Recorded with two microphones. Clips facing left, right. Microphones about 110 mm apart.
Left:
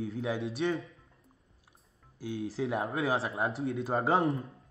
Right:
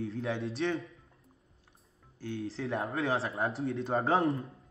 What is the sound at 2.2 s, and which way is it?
A woman's voice, 10° left (ahead or behind).